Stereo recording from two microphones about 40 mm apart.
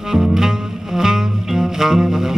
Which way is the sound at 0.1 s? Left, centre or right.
Centre.